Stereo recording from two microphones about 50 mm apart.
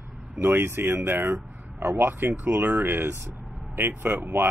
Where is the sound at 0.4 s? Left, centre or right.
Right.